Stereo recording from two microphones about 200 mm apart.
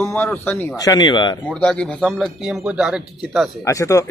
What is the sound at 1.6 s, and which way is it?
A man's voice, 5° left (ahead or behind).